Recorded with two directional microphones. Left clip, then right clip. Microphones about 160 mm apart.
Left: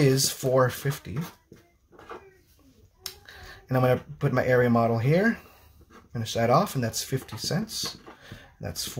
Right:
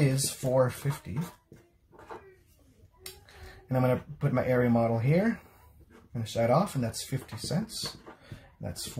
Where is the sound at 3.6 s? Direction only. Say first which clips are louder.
Left 4 dB; 45° left (ahead or behind).